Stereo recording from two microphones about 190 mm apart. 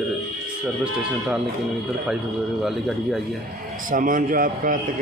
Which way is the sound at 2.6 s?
Centre (ahead or behind).